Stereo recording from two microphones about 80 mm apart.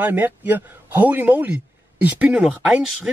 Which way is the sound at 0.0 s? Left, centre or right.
Right.